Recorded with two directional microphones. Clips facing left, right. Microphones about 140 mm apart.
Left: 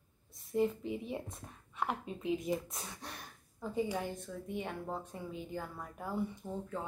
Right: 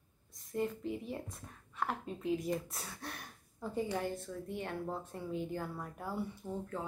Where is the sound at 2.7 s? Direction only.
15° left (ahead or behind).